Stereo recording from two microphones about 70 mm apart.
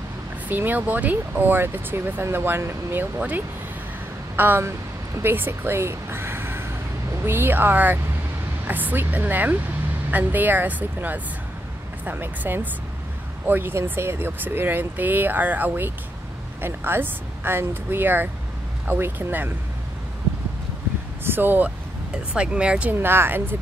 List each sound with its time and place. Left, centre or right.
0.5 s speech: right
3.2 s speech: right
4.4 s speech: right
21.2 s speech: right
22.3 s speech: centre
22.9 s speech: right